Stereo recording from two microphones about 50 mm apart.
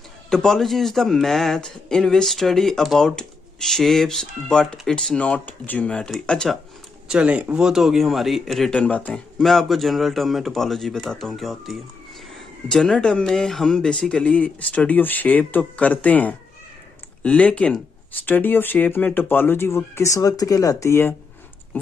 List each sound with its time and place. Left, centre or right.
0.3 s speech: centre
5.2 s speech: left
5.9 s speech: centre
7.1 s speech: right
7.5 s speech: centre
8.8 s speech: left
9.1 s speech: centre; by 17.7 s left
18.2 s speech: left